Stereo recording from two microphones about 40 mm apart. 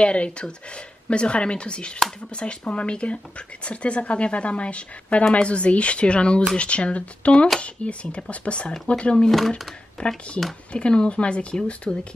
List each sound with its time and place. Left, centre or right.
0.0 s speech: left
10.7 s speech: left